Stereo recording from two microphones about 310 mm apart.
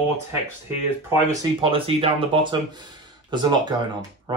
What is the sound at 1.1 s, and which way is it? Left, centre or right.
Speech, centre.